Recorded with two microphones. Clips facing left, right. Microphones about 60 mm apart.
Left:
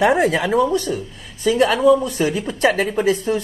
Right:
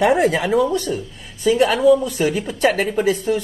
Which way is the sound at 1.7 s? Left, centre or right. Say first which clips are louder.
Even; left.